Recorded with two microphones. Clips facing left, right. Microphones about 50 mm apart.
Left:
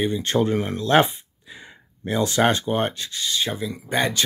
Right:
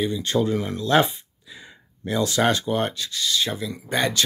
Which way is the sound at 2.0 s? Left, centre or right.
Left.